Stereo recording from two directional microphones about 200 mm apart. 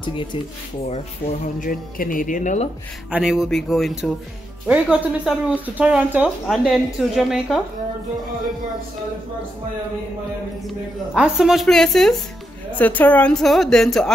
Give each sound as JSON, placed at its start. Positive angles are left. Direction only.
{"t": 0.0, "sound": "speech", "side_deg": 25}
{"t": 1.2, "sound": "speech", "side_deg": 45}
{"t": 3.1, "sound": "a woman's voice", "side_deg": -5}
{"t": 11.1, "sound": "a woman's voice", "side_deg": 0}